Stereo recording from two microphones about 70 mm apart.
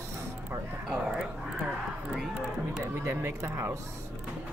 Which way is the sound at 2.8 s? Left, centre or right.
Right.